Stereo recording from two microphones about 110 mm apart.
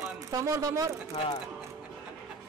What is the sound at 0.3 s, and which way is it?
Speech, 30° right (ahead or behind).